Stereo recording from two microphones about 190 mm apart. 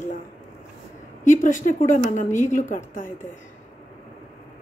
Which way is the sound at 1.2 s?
45° left (ahead or behind).